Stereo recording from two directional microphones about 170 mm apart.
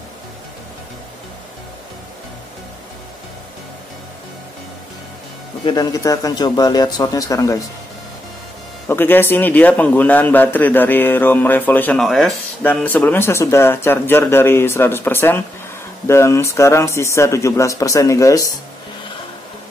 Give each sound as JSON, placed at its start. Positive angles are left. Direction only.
{"t": 5.7, "sound": "speech", "side_deg": 20}
{"t": 8.8, "sound": "a man's voice", "side_deg": 10}